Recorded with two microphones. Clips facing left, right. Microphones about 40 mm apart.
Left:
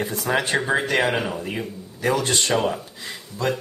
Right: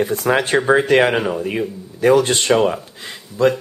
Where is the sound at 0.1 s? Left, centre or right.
Right.